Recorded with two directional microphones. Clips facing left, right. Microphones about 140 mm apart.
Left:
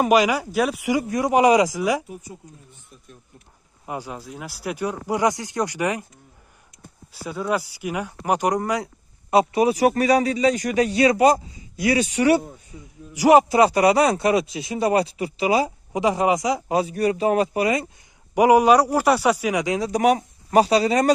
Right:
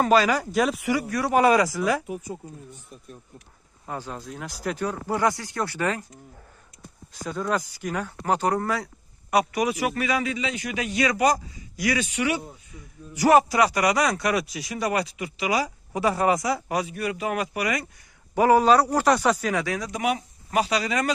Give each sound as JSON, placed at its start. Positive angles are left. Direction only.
{"t": 0.0, "sound": "speech", "side_deg": 15}
{"t": 1.0, "sound": "speech", "side_deg": 20}
{"t": 3.8, "sound": "speech", "side_deg": 10}
{"t": 7.2, "sound": "speech", "side_deg": 10}
{"t": 13.1, "sound": "speech", "side_deg": 15}
{"t": 13.5, "sound": "speech", "side_deg": 30}
{"t": 16.8, "sound": "speech", "side_deg": 35}
{"t": 18.3, "sound": "speech", "side_deg": 15}
{"t": 19.9, "sound": "speech", "side_deg": 45}